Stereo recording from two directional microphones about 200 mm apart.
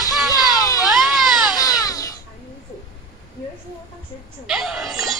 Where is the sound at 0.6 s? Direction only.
15° left (ahead or behind).